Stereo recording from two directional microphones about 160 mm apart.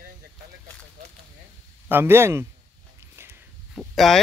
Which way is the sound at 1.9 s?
15° right (ahead or behind).